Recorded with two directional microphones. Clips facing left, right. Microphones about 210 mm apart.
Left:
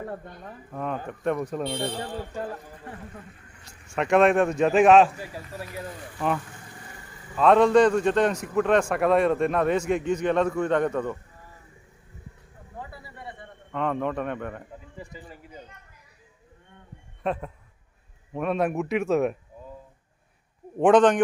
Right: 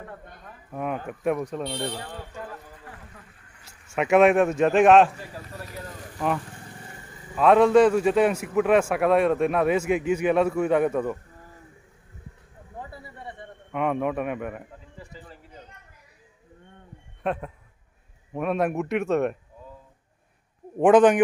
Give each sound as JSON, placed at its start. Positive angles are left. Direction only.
{"t": 0.0, "sound": "speech", "side_deg": 40}
{"t": 0.7, "sound": "a man's voice", "side_deg": -10}
{"t": 2.3, "sound": "a sound", "side_deg": 30}
{"t": 3.6, "sound": "speech", "side_deg": -5}
{"t": 6.1, "sound": "a man's voice", "side_deg": -5}
{"t": 13.7, "sound": "a man's voice", "side_deg": -10}
{"t": 17.2, "sound": "speech", "side_deg": 0}
{"t": 20.8, "sound": "a man's voice", "side_deg": -5}